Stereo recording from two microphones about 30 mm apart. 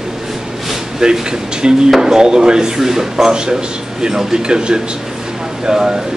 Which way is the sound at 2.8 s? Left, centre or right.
Centre.